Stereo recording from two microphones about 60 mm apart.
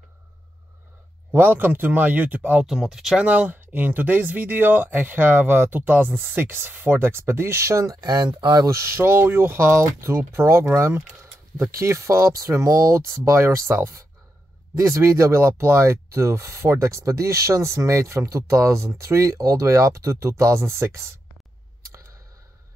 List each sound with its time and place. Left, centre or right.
1.3 s speech: right
2.6 s speech: centre
3.3 s speech: right
8.7 s speech: right